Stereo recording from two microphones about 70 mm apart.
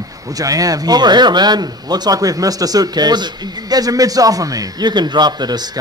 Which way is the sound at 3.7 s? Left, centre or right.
Right.